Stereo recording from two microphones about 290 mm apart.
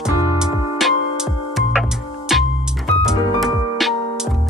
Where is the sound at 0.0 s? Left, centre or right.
Centre.